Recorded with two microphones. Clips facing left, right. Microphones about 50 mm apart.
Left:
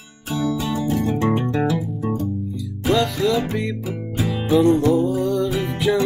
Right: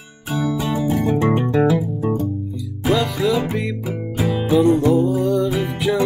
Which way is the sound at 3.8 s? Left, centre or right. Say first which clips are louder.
Right 2 dB; right.